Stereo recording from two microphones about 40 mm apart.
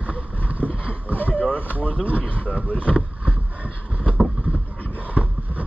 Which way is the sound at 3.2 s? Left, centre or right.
Right.